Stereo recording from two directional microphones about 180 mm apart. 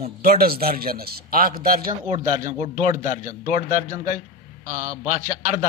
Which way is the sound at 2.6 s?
35° right (ahead or behind).